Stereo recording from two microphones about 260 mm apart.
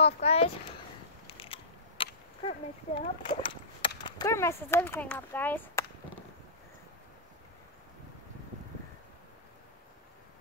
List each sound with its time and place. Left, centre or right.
0.0 s speech: left
1.2 s a sound: left
4.0 s speech: centre